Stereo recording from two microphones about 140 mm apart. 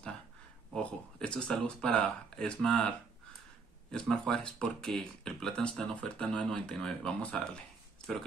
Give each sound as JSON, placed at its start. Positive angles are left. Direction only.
{"t": 0.7, "sound": "speech", "side_deg": 5}
{"t": 3.9, "sound": "speech", "side_deg": 5}